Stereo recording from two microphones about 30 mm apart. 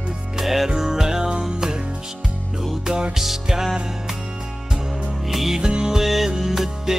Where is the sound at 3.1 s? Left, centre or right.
Centre.